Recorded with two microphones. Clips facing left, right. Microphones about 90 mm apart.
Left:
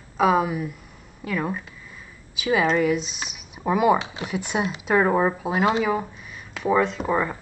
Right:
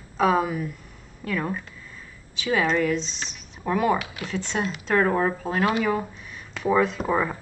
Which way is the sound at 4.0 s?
25° left (ahead or behind).